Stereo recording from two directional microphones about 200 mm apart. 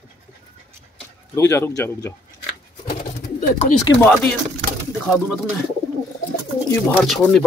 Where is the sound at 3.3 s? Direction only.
40° left (ahead or behind).